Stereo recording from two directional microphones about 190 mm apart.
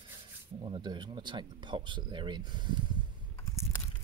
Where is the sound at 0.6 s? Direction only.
25° right (ahead or behind).